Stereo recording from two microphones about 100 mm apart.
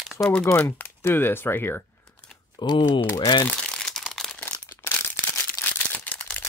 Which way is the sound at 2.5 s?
50° left (ahead or behind).